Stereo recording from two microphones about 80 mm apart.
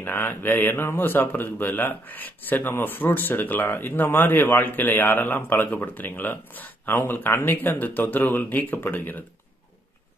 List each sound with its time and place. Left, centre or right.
0.0 s a man's voice: left